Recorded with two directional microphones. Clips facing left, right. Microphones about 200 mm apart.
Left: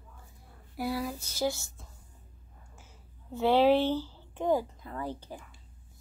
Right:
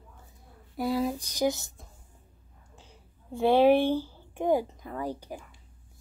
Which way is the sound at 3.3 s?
15° right (ahead or behind).